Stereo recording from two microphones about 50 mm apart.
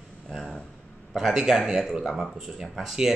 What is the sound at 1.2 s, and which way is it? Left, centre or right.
Speech, centre.